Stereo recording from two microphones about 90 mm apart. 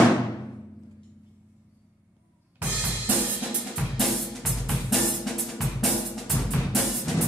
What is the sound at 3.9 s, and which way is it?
Drum kit, centre (ahead or behind).